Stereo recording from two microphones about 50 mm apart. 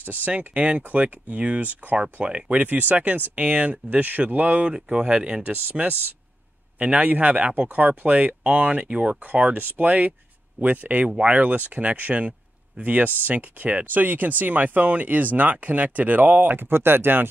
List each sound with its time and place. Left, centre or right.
0.0 s speech: right
4.7 s speech: centre
5.5 s speech: right
6.8 s speech: right